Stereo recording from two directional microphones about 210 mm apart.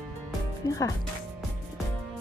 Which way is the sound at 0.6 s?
15° left (ahead or behind).